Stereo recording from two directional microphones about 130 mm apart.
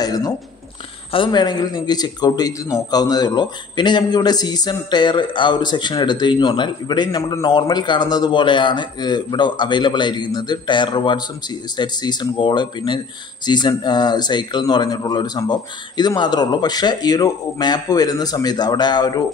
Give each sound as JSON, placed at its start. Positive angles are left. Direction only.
{"t": 0.0, "sound": "a man's voice", "side_deg": 30}